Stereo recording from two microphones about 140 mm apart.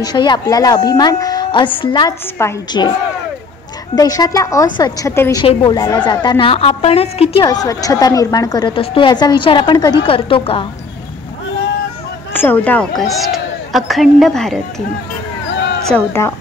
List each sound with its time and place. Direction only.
0.0 s a woman's voice: 30° left (ahead or behind)
2.4 s a woman's voice: 15° left (ahead or behind)
3.9 s a woman's voice: 25° left (ahead or behind)
5.1 s a woman's voice: 20° left (ahead or behind)
5.4 s a woman's voice: 35° left (ahead or behind)
7.4 s a woman's voice: 25° left (ahead or behind)
12.4 s a woman's voice: 10° left (ahead or behind)
16.1 s a woman's voice: 15° left (ahead or behind)